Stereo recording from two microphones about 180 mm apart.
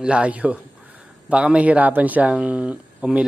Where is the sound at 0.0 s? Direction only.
5° right (ahead or behind).